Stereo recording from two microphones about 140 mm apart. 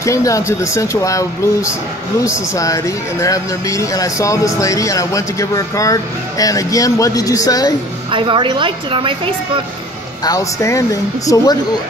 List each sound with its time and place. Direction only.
0.0 s speech: 20° left (ahead or behind)
8.1 s a woman's voice: 35° right (ahead or behind)
10.2 s speech: 25° left (ahead or behind)